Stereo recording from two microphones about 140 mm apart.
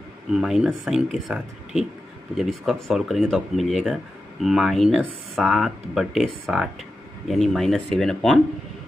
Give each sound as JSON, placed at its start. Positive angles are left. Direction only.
{"t": 0.3, "sound": "speech", "side_deg": -5}